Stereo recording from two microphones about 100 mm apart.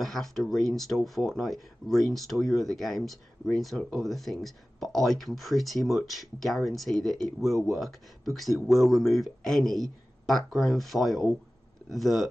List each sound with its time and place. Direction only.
0.0 s speech: 5° left (ahead or behind)